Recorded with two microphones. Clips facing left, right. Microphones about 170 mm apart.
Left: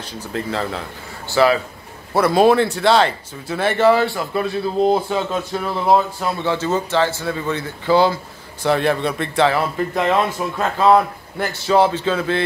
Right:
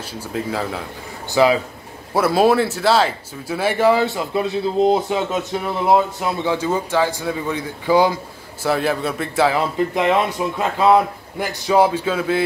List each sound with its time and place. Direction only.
0.3 s speech: 5° right (ahead or behind)
2.1 s a man's voice: 5° right (ahead or behind)